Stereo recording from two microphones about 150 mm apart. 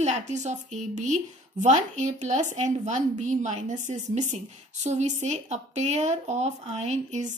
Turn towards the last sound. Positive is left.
turn(degrees=-50)  # may be behind; listen again after turning